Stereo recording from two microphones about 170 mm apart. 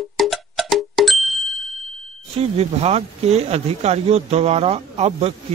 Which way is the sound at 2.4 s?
40° right (ahead or behind).